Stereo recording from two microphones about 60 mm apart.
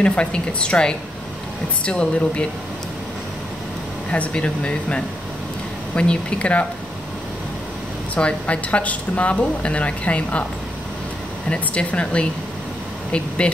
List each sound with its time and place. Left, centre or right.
0.0 s a woman's voice: centre
4.1 s a woman's voice: centre
8.1 s speech: left
11.4 s speech: left
13.4 s speech: centre